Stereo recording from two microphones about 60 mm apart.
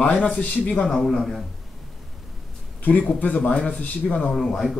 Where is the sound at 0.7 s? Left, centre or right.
Centre.